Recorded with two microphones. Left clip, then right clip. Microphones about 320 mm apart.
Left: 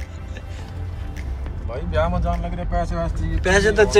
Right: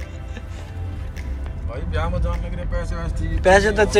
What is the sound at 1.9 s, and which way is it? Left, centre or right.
Speech, centre.